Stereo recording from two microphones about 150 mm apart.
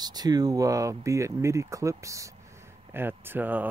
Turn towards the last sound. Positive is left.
turn(degrees=-10)  # may be behind; listen again after turning